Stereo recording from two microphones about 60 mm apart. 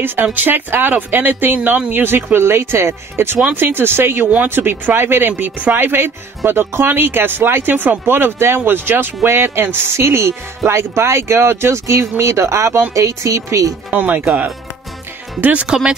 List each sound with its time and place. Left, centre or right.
0.0 s speech: right
13.9 s speech: right; by 16.0 s centre